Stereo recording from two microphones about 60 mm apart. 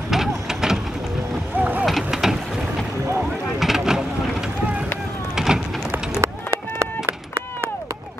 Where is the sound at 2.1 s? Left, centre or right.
Centre.